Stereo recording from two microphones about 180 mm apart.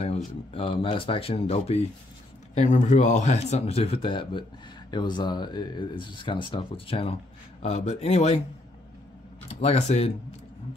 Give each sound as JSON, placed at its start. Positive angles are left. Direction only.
{"t": 0.0, "sound": "speech", "side_deg": 30}
{"t": 9.6, "sound": "speech", "side_deg": 35}